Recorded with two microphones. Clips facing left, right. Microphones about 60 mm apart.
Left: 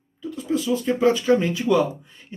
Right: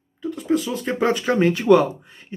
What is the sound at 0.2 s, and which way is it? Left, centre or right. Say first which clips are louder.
Speech: right 3 dB; right.